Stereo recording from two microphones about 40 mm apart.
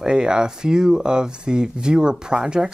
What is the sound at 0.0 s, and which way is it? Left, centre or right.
Speech, right.